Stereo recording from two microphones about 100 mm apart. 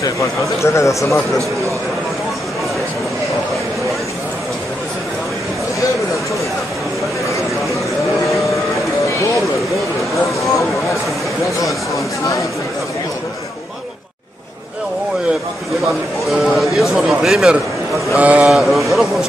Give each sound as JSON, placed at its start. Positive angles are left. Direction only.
{"t": 0.0, "sound": "speech", "side_deg": 30}
{"t": 16.3, "sound": "speech", "side_deg": 0}
{"t": 18.1, "sound": "vehicle", "side_deg": -15}
{"t": 18.5, "sound": "speech", "side_deg": 0}